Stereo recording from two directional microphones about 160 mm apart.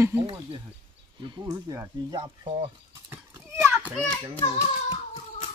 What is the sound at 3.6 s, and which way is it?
Children playing, 10° right (ahead or behind).